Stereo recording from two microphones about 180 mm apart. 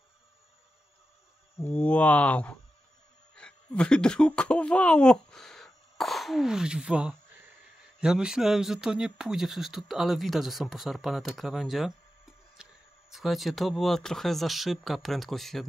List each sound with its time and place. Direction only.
1.6 s speech: 10° left (ahead or behind)
12.6 s a sound: 5° right (ahead or behind)
13.1 s speech: centre (ahead or behind)